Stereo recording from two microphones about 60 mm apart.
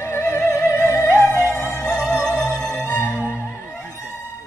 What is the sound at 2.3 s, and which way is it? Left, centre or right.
Music, left.